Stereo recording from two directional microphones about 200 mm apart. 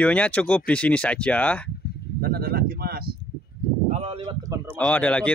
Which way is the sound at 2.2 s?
50° right (ahead or behind).